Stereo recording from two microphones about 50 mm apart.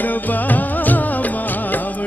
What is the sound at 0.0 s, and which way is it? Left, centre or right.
Music, left.